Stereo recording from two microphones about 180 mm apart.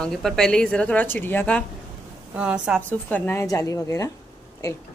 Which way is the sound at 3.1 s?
15° left (ahead or behind).